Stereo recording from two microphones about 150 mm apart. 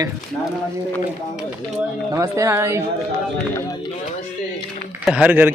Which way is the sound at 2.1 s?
20° right (ahead or behind).